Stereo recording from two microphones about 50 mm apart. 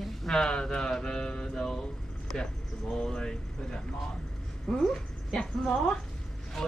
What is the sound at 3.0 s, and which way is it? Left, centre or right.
A woman's voice, centre.